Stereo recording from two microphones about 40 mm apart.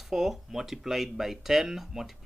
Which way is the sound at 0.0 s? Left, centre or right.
Centre.